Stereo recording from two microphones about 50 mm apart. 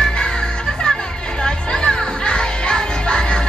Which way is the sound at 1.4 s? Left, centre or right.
Centre.